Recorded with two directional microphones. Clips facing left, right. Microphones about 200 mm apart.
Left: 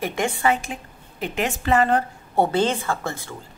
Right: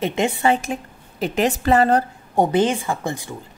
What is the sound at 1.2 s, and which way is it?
Speech, 35° right (ahead or behind).